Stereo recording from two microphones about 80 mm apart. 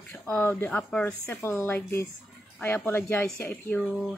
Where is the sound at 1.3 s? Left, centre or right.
Left.